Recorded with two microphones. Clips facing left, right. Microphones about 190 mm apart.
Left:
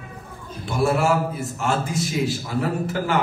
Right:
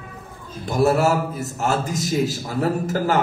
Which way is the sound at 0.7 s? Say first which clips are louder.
Right 2 dB; 40° right (ahead or behind).